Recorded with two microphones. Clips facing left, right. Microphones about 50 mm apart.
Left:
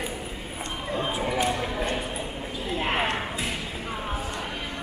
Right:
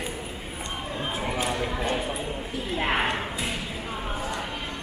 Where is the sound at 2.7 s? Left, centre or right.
Right.